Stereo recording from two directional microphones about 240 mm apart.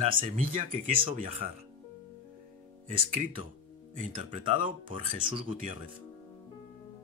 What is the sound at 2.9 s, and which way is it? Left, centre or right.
Speech, right.